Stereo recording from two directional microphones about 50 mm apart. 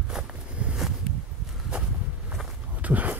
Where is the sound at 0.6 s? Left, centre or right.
Right.